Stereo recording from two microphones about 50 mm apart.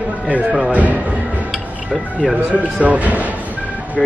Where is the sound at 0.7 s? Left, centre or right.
Right.